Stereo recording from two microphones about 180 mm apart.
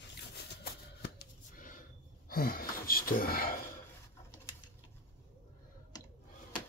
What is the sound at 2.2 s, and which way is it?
Gasp, 55° left (ahead or behind).